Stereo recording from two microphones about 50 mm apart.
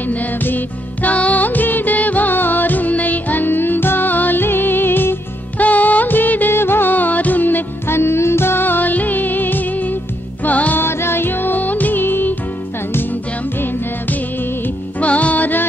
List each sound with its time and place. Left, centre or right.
0.0 s music: left
5.6 s music of bollywood: left
10.4 s music: left
10.8 s music: left